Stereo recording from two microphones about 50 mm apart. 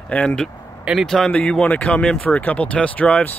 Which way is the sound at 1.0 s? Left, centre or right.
Centre.